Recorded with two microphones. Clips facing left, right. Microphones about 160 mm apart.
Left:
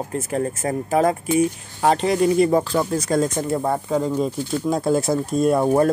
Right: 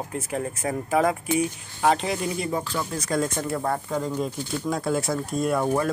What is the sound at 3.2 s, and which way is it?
Speech, 25° left (ahead or behind).